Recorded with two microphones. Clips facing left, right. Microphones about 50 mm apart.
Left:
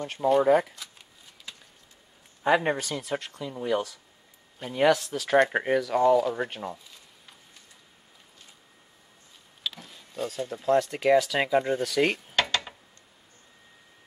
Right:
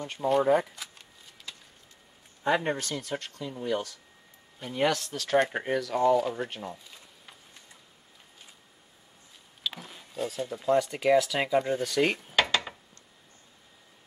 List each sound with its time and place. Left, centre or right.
0.0 s speech: centre
2.4 s speech: centre
5.5 s speech: centre
5.8 s speech: centre
9.8 s a sound: centre
10.1 s speech: centre
12.4 s a sound: centre